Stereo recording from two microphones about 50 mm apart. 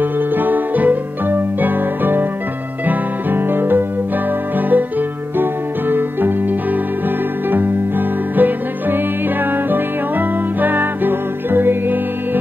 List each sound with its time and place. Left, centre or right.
0.0 s music: right
8.4 s music: right